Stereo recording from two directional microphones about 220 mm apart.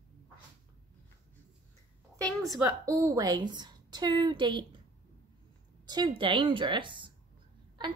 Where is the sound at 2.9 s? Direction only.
15° right (ahead or behind).